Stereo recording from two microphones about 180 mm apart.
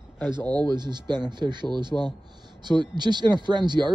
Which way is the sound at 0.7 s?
25° right (ahead or behind).